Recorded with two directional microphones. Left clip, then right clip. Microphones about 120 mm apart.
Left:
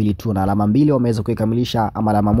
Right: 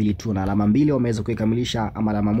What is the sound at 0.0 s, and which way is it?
Speech, 35° left (ahead or behind).